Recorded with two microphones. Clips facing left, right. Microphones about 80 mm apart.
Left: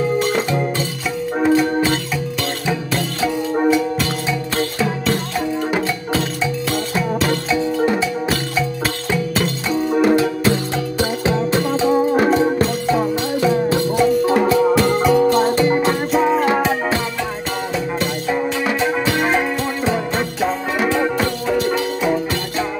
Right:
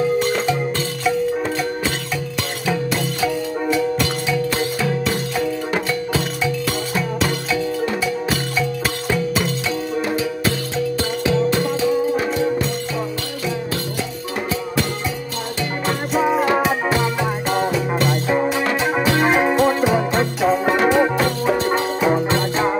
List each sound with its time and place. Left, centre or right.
1.0 s music: centre
4.0 s music: centre
11.2 s music: left
13.7 s music: left
14.7 s music: left
15.4 s music: left
15.9 s music: centre
18.8 s music: centre
20.2 s music: centre
21.5 s music: right